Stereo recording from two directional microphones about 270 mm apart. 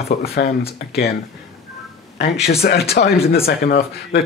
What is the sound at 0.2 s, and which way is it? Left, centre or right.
Speech, left.